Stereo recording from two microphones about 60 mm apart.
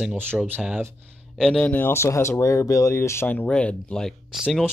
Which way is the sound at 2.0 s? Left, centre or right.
Left.